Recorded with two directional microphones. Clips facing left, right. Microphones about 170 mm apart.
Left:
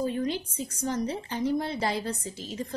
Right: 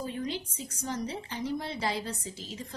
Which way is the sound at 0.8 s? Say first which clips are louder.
Left 5 dB; 50° left (ahead or behind).